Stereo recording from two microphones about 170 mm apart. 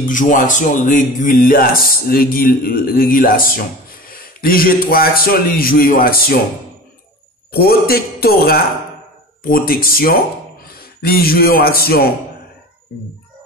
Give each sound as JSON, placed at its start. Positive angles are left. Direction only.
{"t": 0.0, "sound": "speech", "side_deg": 50}
{"t": 7.5, "sound": "a man's voice", "side_deg": 65}